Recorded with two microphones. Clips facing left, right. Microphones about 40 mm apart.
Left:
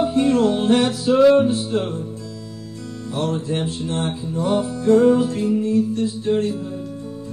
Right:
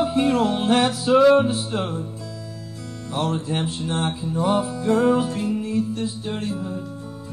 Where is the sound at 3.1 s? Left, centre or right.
Centre.